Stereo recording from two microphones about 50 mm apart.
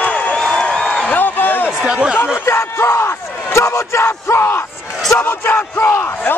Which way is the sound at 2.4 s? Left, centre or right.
Left.